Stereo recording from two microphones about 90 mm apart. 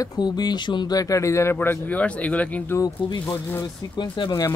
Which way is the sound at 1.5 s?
20° left (ahead or behind).